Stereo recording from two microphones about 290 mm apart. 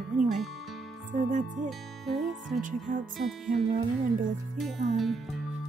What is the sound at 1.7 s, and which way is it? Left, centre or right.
Speech, centre.